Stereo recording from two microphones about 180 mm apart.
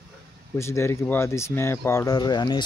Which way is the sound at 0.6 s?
15° left (ahead or behind).